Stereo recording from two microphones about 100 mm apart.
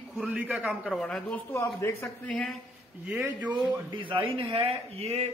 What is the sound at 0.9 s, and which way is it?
Speech, 5° left (ahead or behind).